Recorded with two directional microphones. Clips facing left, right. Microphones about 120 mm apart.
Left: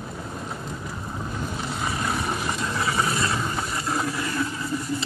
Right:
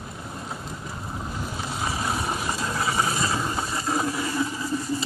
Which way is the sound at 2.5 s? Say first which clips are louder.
Even; 30° right (ahead or behind).